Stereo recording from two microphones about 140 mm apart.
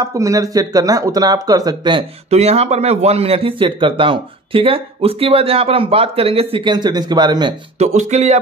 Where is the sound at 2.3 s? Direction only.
50° right (ahead or behind); by 7.5 s 30° right (ahead or behind).